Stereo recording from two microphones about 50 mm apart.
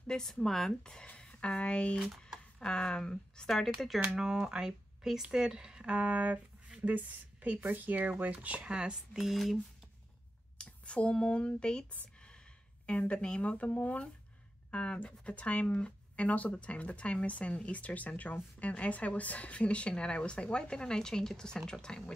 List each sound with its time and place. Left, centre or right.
0.0 s speech: centre
3.4 s speech: centre
4.2 s speech: centre
5.9 s speech: right
8.7 s speech: centre
9.2 s speech: centre
10.6 s speech: left
13.1 s speech: left
14.7 s speech: left